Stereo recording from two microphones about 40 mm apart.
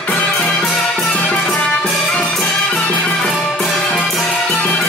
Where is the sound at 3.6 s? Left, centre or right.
Centre.